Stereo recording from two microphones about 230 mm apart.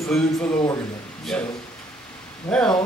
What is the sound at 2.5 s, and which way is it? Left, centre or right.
Speech, centre.